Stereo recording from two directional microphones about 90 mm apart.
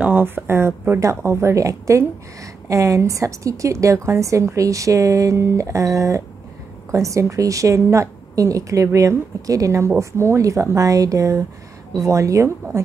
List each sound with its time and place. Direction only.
0.0 s speech: 20° right (ahead or behind)